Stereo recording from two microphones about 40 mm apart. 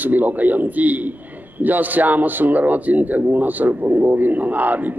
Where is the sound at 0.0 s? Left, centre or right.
Right.